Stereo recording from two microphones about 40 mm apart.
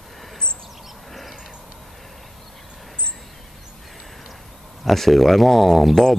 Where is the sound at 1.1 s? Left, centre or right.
Centre.